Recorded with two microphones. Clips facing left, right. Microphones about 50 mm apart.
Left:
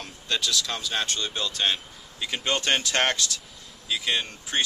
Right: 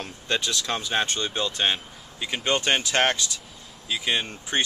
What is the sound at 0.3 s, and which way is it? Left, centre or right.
Speech, right.